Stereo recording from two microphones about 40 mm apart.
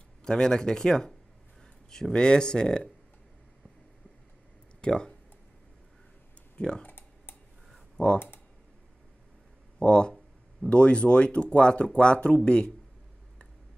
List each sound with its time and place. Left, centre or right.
0.2 s speech: centre
4.8 s speech: centre
6.6 s speech: left
8.0 s speech: left
9.8 s speech: left